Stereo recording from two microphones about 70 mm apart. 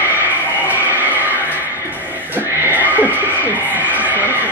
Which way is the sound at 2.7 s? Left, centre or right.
Right.